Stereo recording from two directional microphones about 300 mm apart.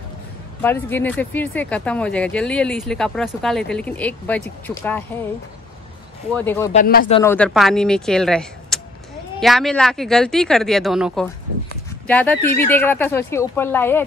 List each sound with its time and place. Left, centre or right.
0.6 s speech: centre
6.3 s a woman's voice: centre
6.7 s speech: left
7.2 s a woman's voice: centre